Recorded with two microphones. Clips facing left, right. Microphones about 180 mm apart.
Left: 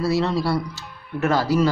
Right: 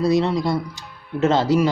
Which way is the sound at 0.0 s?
15° right (ahead or behind).